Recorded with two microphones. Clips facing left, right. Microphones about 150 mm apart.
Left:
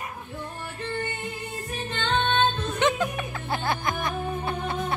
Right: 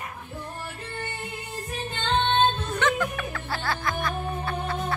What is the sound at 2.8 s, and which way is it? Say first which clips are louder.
Music: left 2 dB; 20° left (ahead or behind).